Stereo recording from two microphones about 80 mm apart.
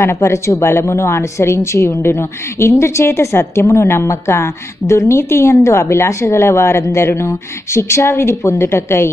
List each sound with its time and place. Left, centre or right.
0.0 s a woman's voice: left